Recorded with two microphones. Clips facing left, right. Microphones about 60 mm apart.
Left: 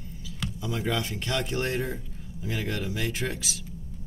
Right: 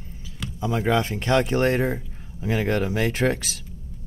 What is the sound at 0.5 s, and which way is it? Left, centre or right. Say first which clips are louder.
Speech: right 8 dB; right.